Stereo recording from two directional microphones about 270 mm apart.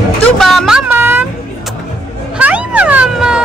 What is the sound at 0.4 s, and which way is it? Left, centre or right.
Vehicle, centre.